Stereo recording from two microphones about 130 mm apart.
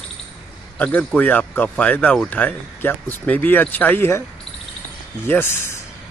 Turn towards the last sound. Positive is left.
turn(degrees=15)  # may be behind; listen again after turning